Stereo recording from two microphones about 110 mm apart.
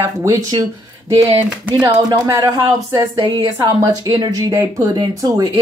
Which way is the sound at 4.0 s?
40° right (ahead or behind).